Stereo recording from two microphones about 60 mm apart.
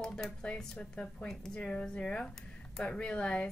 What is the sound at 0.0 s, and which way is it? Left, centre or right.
Speech, centre.